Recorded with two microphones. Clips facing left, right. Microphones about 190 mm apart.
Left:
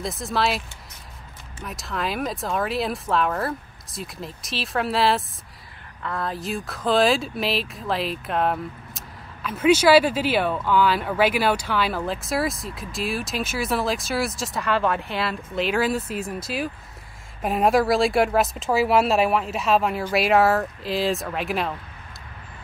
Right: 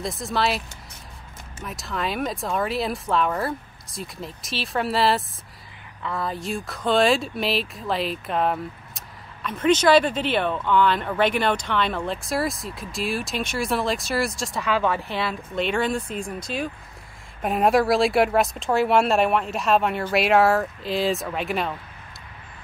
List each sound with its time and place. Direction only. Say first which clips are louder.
0.0 s speech: even; centre (ahead or behind)